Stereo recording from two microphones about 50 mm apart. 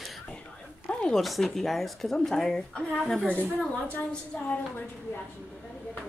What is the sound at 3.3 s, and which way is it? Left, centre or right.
Speech, right.